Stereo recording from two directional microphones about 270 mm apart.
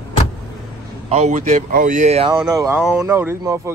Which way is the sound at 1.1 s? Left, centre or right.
Right.